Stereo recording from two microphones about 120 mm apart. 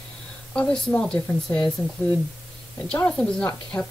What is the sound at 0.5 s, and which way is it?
A woman's voice, 10° left (ahead or behind).